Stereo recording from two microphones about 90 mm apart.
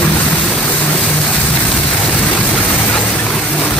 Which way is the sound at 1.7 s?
5° left (ahead or behind).